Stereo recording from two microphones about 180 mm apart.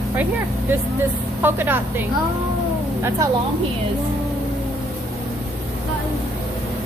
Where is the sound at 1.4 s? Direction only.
10° right (ahead or behind).